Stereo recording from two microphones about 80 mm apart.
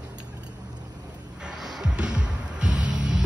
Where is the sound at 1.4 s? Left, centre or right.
Centre.